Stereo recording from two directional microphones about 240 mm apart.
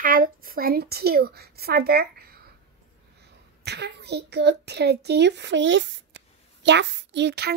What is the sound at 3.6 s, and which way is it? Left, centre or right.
A child's voice, right.